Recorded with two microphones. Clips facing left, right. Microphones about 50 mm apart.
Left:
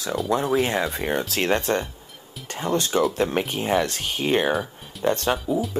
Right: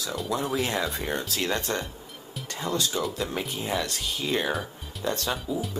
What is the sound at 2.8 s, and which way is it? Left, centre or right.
Speech, left.